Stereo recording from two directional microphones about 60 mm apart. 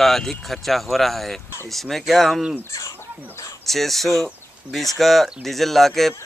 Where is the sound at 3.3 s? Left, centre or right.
Left.